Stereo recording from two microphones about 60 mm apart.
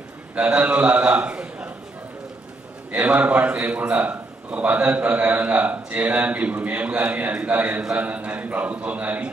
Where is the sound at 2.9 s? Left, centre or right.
Right.